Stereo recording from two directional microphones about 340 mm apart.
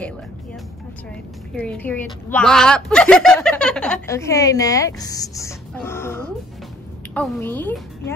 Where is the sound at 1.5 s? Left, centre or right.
Centre.